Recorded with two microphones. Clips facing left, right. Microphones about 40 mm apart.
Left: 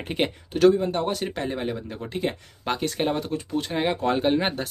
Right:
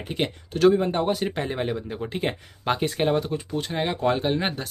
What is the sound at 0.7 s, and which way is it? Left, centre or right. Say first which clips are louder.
Speech: right 1 dB; right.